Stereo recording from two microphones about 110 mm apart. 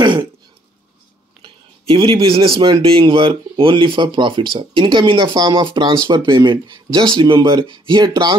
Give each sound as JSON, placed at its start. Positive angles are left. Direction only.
{"t": 1.4, "sound": "speech", "side_deg": -55}